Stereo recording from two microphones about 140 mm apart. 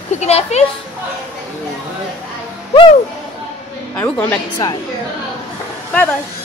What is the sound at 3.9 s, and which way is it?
Speech, 10° left (ahead or behind).